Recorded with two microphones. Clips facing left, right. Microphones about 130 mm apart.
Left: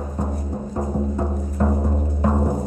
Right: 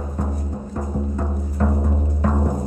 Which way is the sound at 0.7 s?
15° left (ahead or behind).